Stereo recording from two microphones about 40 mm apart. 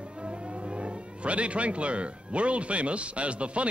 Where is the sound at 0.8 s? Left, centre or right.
Right.